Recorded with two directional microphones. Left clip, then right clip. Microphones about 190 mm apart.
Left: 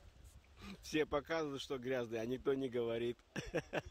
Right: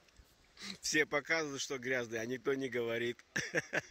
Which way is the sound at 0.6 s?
Centre (ahead or behind).